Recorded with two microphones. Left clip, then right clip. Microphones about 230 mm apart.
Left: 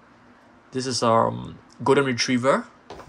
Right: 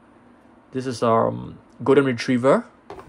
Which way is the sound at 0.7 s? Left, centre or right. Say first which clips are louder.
Even; centre.